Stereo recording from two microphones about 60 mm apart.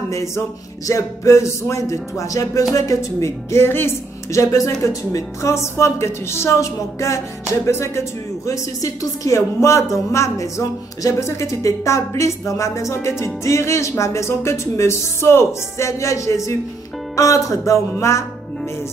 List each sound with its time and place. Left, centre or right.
0.1 s a woman's voice: left
2.7 s a woman's voice: left
4.4 s a woman's voice: left
13.2 s music: left
17.1 s a woman's voice: left